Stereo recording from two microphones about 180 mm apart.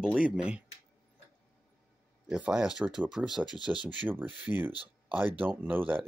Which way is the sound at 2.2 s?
5° right (ahead or behind).